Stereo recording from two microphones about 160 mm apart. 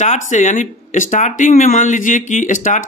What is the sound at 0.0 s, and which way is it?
Speech, 50° left (ahead or behind).